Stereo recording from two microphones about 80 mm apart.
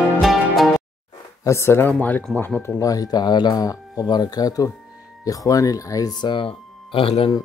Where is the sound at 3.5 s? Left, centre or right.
Left.